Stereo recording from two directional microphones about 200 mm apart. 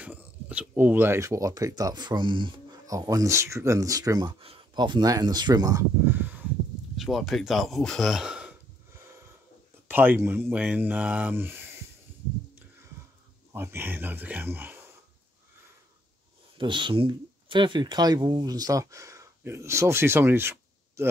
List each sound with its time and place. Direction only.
0.0 s speech: 5° right (ahead or behind)
9.8 s speech: 10° right (ahead or behind)
13.5 s a sound: 10° right (ahead or behind)
16.5 s speech: 25° right (ahead or behind)